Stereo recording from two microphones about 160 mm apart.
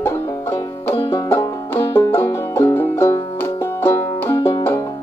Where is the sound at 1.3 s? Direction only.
15° left (ahead or behind).